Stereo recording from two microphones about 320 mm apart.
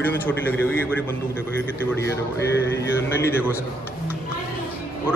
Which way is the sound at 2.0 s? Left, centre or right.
Left.